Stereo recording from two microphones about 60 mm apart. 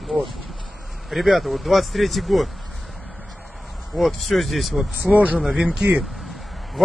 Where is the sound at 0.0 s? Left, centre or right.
Centre.